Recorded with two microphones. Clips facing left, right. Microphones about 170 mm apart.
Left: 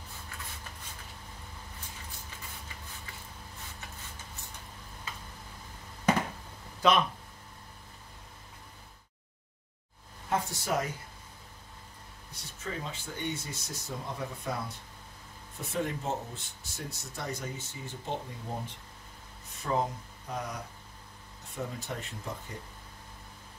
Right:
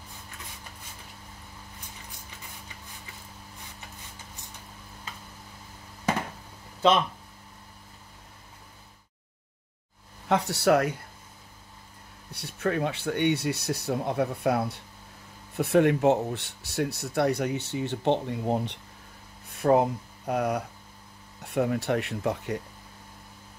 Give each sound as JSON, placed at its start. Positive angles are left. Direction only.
{"t": 10.2, "sound": "speech", "side_deg": -75}
{"t": 12.3, "sound": "speech", "side_deg": -65}
{"t": 19.6, "sound": "speech", "side_deg": -65}